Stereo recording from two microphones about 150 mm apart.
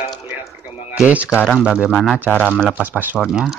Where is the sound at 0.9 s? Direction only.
10° right (ahead or behind); by 2.7 s 10° left (ahead or behind).